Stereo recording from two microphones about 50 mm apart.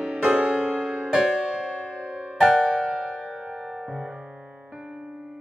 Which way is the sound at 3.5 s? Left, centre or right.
Centre.